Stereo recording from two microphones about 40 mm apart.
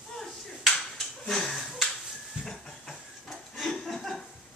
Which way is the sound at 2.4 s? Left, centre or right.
Centre.